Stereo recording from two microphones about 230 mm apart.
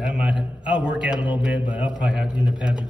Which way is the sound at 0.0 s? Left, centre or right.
Centre.